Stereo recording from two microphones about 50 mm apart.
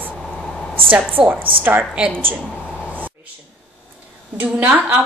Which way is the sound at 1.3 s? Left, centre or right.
Right.